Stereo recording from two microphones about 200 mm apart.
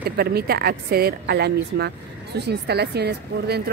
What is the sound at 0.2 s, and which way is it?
Speech, 50° right (ahead or behind).